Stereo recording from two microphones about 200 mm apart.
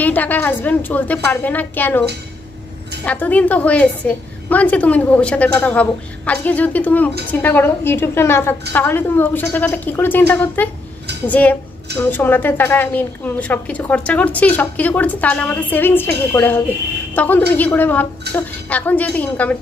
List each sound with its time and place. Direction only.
0.0 s a woman's voice: 10° left (ahead or behind)
3.1 s a woman's voice: 5° left (ahead or behind)